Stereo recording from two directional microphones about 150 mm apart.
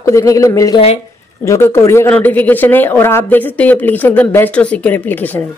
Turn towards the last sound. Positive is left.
turn(degrees=15)  # may be behind; listen again after turning